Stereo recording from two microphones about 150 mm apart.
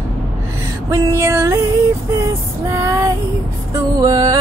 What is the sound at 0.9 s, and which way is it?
Music, 20° right (ahead or behind).